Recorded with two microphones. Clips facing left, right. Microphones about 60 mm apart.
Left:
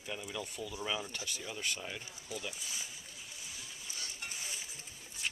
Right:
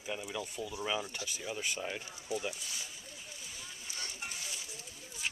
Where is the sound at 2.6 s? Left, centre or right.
Centre.